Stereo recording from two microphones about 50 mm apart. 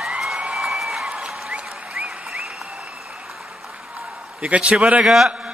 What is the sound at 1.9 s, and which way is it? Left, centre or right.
Applause, centre.